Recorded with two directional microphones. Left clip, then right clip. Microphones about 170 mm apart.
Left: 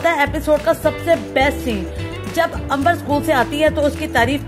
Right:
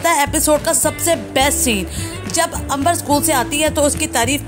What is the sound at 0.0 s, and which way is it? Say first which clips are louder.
A woman's voice: right 1 dB; 10° right (ahead or behind).